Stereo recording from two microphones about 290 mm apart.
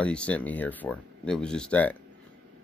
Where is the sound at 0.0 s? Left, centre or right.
Centre.